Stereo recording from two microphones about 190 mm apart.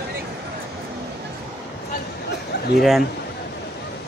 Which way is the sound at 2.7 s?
Centre (ahead or behind).